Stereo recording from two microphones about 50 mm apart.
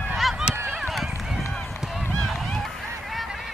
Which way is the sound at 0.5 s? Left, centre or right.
Right.